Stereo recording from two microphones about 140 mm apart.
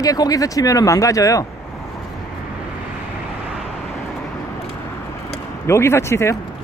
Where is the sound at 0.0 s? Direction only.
25° left (ahead or behind).